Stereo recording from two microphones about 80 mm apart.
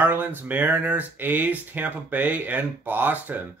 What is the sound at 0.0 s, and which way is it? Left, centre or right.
Speech, right.